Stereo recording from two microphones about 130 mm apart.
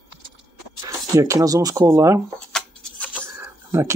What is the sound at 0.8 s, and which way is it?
Speech, 25° right (ahead or behind).